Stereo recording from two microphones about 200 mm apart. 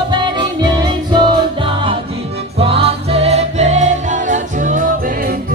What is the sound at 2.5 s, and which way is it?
Music, 30° right (ahead or behind).